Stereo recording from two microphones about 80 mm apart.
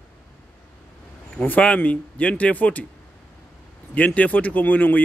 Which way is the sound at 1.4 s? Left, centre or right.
Centre.